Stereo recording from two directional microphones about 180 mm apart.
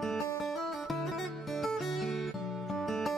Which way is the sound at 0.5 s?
Centre (ahead or behind).